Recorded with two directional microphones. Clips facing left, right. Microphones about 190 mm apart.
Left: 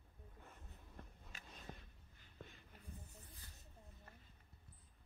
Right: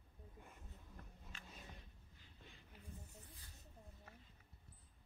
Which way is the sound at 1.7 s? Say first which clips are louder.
Left 5 dB; 50° left (ahead or behind).